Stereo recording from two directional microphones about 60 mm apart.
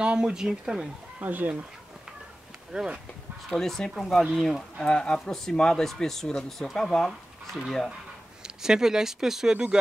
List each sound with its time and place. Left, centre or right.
0.0 s speech: centre
1.2 s speech: right
2.7 s speech: centre
3.4 s speech: centre
4.8 s speech: centre
8.4 s speech: centre